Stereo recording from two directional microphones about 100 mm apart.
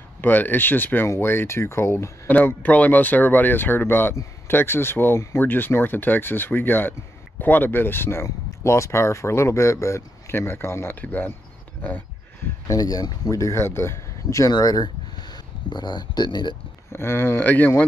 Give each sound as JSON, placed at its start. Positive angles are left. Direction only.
{"t": 0.2, "sound": "speech", "side_deg": 20}
{"t": 2.3, "sound": "speech", "side_deg": 15}
{"t": 12.6, "sound": "speech", "side_deg": 40}
{"t": 14.5, "sound": "speech", "side_deg": 40}
{"t": 16.9, "sound": "speech", "side_deg": 25}